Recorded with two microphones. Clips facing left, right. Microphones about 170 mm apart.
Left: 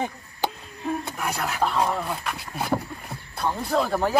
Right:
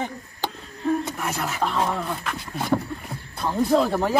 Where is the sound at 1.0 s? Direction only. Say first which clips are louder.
Right 1 dB; centre (ahead or behind).